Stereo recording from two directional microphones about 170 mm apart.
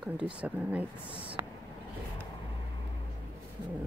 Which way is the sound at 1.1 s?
30° right (ahead or behind).